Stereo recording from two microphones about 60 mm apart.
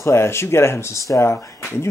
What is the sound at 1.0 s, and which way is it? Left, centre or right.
Speech, left.